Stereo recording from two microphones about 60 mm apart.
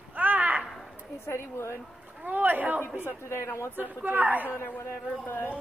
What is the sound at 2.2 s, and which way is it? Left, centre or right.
Speech, right.